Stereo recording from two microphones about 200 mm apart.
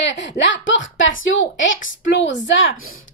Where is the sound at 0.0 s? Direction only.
65° left (ahead or behind).